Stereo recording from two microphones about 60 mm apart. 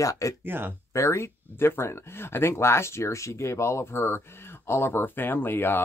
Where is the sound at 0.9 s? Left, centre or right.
Left.